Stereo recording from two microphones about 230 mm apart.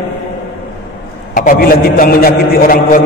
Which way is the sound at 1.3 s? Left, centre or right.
Left.